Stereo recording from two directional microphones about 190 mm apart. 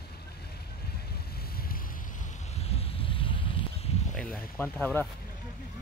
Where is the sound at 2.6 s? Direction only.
30° left (ahead or behind).